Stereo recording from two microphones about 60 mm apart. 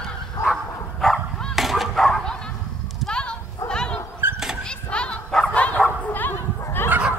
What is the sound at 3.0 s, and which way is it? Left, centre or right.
Dog, centre.